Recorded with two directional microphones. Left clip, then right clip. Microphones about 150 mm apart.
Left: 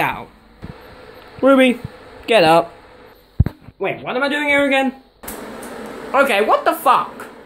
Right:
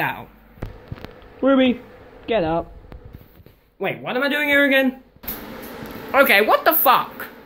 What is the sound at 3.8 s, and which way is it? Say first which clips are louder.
Speech: left 2 dB; 10° left (ahead or behind).